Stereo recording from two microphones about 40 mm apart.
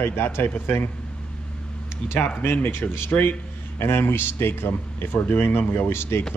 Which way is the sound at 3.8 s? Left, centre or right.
Left.